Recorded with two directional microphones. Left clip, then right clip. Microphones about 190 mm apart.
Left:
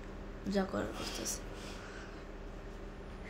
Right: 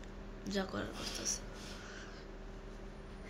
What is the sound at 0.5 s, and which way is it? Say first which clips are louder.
Speech: left 4 dB; 10° left (ahead or behind).